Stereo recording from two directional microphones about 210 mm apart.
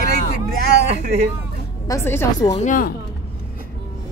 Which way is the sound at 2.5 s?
40° left (ahead or behind).